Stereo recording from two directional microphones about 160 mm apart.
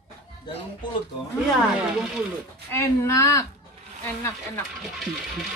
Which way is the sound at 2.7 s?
15° left (ahead or behind).